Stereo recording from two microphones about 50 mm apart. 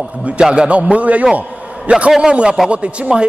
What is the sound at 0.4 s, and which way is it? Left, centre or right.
A man's voice, centre.